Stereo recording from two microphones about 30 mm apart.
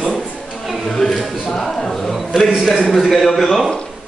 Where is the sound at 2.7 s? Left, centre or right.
Centre.